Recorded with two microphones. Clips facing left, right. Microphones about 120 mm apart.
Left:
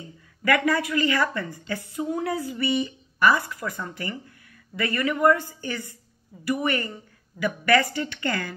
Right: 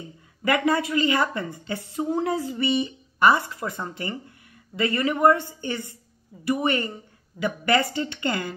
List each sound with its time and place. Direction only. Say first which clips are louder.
0.4 s speech: even; 25° right (ahead or behind)